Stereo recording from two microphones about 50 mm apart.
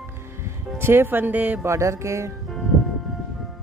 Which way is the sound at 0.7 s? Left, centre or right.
Right.